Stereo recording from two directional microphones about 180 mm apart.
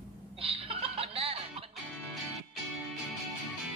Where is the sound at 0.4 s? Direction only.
30° right (ahead or behind).